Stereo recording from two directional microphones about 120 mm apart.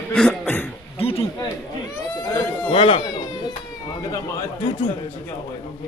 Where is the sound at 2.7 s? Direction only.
55° left (ahead or behind).